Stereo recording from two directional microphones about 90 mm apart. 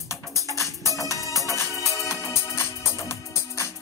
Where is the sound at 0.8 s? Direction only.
35° left (ahead or behind).